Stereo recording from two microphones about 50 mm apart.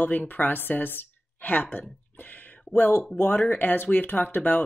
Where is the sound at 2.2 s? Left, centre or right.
Left.